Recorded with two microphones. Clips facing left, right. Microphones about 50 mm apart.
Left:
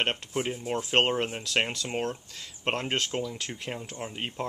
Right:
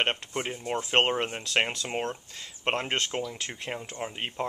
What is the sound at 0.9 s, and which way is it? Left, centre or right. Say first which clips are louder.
Speech: even; centre.